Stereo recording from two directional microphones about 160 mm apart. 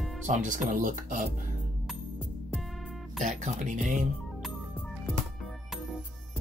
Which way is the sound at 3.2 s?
50° right (ahead or behind).